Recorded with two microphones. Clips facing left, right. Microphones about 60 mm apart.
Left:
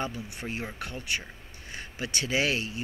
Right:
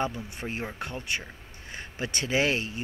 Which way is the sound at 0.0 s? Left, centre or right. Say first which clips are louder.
Right 3 dB; right.